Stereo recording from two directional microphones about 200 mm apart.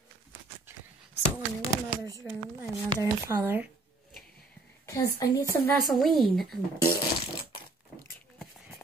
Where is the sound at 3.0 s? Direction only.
15° right (ahead or behind).